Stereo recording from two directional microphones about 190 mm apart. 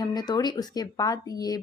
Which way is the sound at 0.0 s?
20° left (ahead or behind).